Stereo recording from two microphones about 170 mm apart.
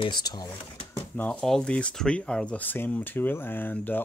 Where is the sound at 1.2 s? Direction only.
5° left (ahead or behind).